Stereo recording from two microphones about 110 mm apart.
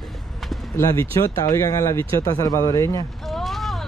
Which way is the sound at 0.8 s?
25° left (ahead or behind).